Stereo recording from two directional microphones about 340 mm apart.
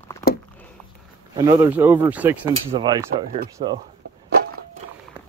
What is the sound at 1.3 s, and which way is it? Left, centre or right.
Speech, centre.